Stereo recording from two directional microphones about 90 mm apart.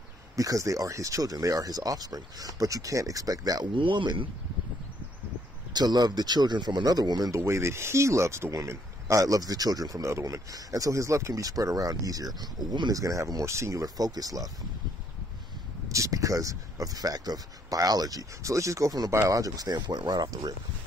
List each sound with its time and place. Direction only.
0.4 s speech: 40° right (ahead or behind)
3.7 s speech: 65° right (ahead or behind)
5.7 s speech: 50° right (ahead or behind)
15.9 s speech: 35° right (ahead or behind)